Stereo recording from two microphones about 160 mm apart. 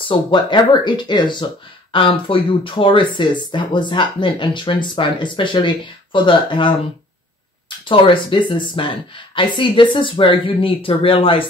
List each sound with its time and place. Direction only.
0.1 s speech: 30° left (ahead or behind)
7.8 s speech: 30° left (ahead or behind)